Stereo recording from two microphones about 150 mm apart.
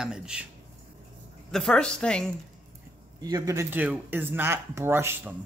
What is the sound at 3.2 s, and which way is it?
Speech, 25° right (ahead or behind).